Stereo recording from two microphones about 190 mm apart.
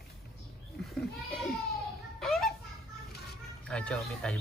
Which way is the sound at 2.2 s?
Centre (ahead or behind).